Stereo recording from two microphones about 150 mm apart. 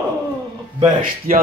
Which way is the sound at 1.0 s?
70° right (ahead or behind).